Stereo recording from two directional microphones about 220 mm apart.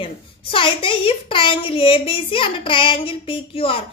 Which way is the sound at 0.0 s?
25° left (ahead or behind).